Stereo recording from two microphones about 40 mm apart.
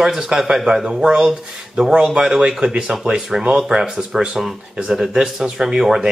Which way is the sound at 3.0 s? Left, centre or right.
Centre.